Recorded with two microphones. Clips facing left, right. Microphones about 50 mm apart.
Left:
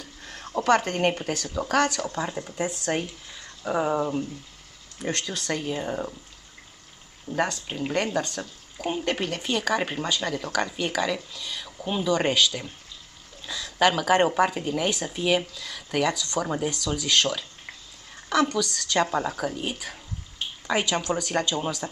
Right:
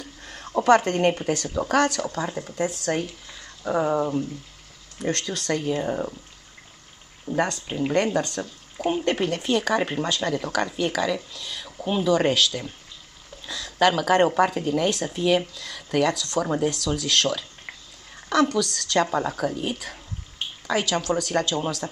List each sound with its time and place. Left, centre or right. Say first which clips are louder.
0.0 s a sound: right 1 dB; centre
0.7 s speech: right 4 dB; centre
3.3 s a sound: right 2 dB; centre
4.9 s speech: right 3 dB; centre
7.3 s speech: right 2 dB; centre
20.6 s speech: right 1 dB; centre